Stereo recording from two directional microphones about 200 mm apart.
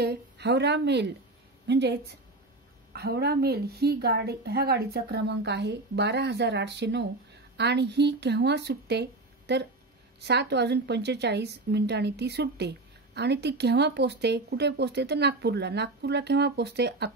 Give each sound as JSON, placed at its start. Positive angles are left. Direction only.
{"t": 0.0, "sound": "a woman's voice", "side_deg": -55}